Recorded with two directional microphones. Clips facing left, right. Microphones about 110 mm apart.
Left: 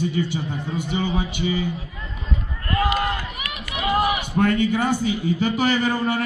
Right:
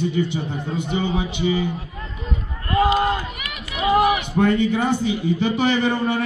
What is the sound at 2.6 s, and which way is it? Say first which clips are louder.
Run: right 4 dB; 25° right (ahead or behind).